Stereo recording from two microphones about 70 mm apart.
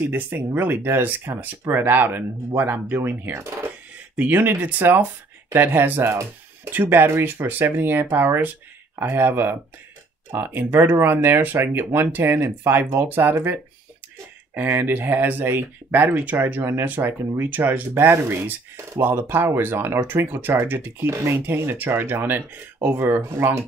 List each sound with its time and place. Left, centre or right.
0.0 s speech: right
21.1 s speech: right
21.5 s speech: right